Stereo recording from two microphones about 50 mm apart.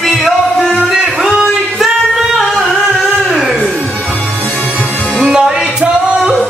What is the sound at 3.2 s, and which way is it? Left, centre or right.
Music, centre.